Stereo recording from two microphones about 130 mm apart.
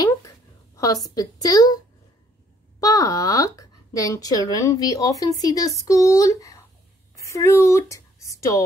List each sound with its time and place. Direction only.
0.7 s speech: 25° left (ahead or behind)
2.8 s speech: 25° left (ahead or behind)